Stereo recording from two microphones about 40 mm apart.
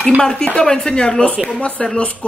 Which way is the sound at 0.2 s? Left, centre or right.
Centre.